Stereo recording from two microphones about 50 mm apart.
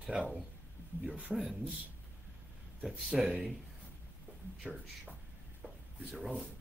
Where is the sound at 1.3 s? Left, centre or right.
Centre.